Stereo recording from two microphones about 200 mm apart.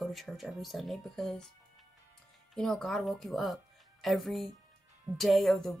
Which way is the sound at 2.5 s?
5° left (ahead or behind).